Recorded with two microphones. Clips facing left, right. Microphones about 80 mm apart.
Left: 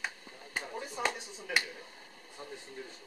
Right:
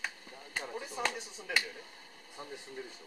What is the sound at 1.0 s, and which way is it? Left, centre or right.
Speech, centre.